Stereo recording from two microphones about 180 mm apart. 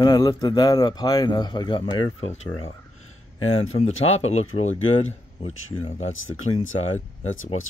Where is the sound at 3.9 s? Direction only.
90° left.